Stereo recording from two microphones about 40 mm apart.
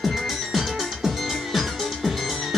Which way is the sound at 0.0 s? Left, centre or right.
Centre.